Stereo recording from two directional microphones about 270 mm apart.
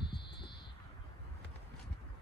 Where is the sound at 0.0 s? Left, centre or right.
Centre.